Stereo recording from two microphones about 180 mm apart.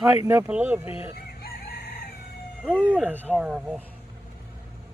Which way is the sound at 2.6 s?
5° left (ahead or behind).